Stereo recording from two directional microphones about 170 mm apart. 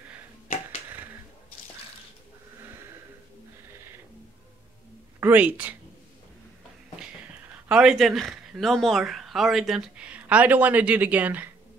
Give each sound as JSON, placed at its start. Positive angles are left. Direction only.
{"t": 5.2, "sound": "speech", "side_deg": -10}
{"t": 7.6, "sound": "speech", "side_deg": -5}